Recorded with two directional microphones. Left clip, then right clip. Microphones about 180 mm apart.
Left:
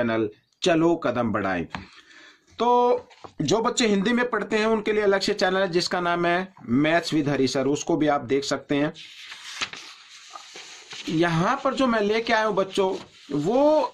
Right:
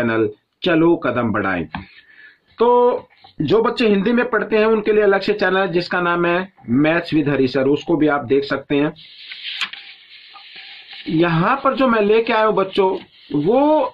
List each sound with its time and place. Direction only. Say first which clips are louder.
0.0 s speech: right 6 dB; 30° left (ahead or behind)
3.4 s speech: right 7 dB; 30° left (ahead or behind)
11.1 s speech: right 6 dB; 25° left (ahead or behind)